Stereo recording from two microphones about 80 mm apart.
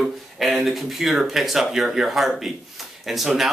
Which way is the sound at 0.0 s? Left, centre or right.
Centre.